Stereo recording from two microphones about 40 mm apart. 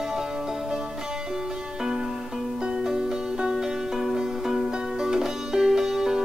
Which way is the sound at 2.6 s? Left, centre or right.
Right.